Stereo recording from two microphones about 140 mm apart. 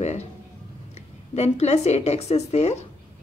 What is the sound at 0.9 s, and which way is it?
A woman's voice, 50° left (ahead or behind).